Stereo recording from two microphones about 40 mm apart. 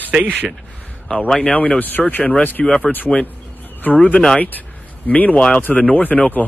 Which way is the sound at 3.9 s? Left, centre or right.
Left.